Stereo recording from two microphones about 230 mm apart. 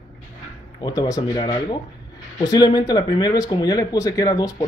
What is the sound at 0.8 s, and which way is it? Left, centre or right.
Speech, centre.